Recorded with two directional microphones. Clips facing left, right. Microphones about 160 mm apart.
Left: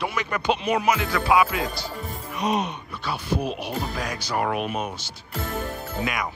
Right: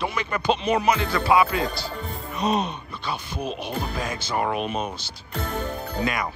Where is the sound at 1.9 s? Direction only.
Centre (ahead or behind).